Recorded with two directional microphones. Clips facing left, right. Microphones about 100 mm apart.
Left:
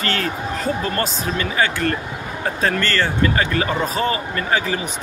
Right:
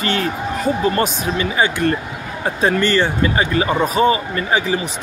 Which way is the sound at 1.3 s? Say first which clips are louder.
Right 2 dB; 20° right (ahead or behind).